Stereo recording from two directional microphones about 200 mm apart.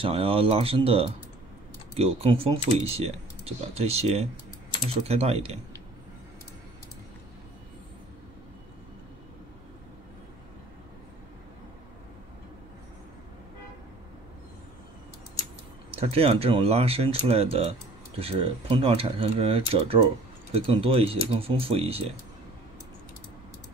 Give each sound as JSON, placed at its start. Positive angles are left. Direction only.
{"t": 0.0, "sound": "speech", "side_deg": -30}
{"t": 16.0, "sound": "speech", "side_deg": -30}